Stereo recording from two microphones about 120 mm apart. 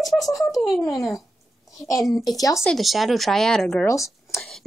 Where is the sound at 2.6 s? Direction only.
Centre (ahead or behind).